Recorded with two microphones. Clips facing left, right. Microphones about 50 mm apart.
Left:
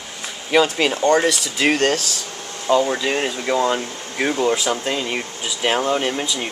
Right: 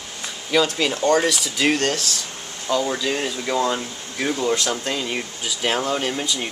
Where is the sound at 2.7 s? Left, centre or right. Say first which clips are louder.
Left 4 dB; left.